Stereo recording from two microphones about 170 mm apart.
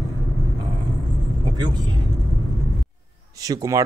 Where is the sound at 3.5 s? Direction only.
20° right (ahead or behind).